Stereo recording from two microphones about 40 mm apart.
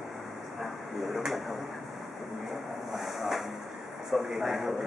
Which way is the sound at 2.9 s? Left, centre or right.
Centre.